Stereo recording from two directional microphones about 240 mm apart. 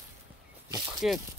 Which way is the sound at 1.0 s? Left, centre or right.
Centre.